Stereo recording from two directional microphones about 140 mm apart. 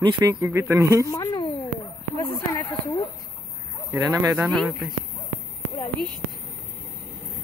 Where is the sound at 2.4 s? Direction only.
15° left (ahead or behind).